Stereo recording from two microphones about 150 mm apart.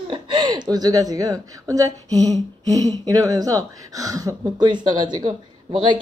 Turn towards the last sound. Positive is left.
turn(degrees=-30)  # may be behind; listen again after turning